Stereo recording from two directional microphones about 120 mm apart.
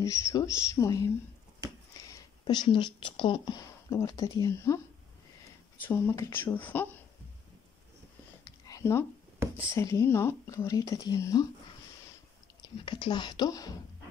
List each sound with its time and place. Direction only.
0.0 s speech: 30° left (ahead or behind)
2.4 s speech: 40° left (ahead or behind); by 4.8 s 25° left (ahead or behind)
5.9 s speech: 20° left (ahead or behind)
8.5 s a sound: 30° left (ahead or behind)
9.6 s speech: 25° left (ahead or behind)
12.8 s speech: 40° left (ahead or behind)